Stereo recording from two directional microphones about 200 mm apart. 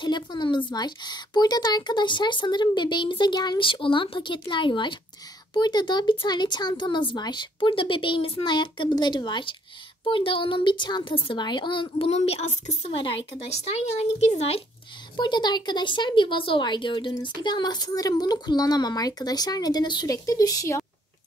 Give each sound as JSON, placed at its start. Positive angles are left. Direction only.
{"t": 0.0, "sound": "speech", "side_deg": 20}